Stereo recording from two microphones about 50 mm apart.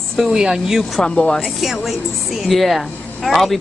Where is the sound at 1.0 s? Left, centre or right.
Centre.